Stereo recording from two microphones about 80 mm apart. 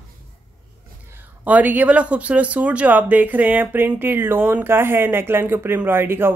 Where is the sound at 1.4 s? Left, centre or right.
Right.